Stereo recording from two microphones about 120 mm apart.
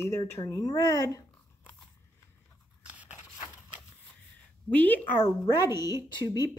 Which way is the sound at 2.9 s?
10° right (ahead or behind).